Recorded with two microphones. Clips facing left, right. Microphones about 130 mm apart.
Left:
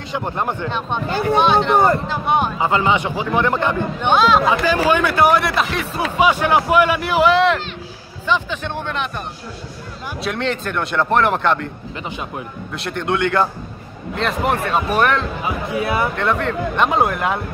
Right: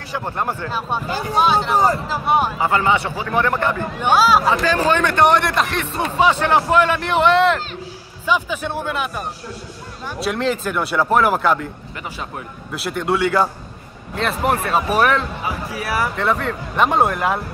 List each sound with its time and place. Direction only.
0.1 s a man's voice: 20° left (ahead or behind)
0.7 s speech: 5° right (ahead or behind)
2.6 s a man's voice: 20° left (ahead or behind)
4.0 s speech: 5° right (ahead or behind)
4.5 s speech: 10° left (ahead or behind); by 9.1 s 10° right (ahead or behind)
10.2 s speech: centre (ahead or behind)
12.7 s speech: 5° right (ahead or behind)
15.4 s a man's voice: 20° left (ahead or behind)
16.2 s speech: 5° right (ahead or behind)